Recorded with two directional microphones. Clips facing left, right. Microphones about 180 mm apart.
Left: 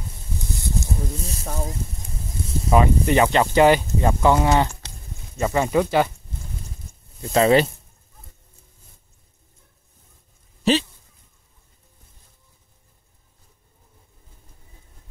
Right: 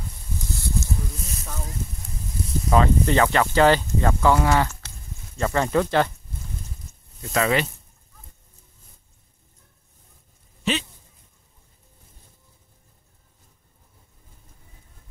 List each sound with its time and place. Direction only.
1.1 s a sound: 30° left (ahead or behind)
2.7 s speech: 15° left (ahead or behind)
7.2 s speech: 30° left (ahead or behind)
10.6 s dog: 35° left (ahead or behind)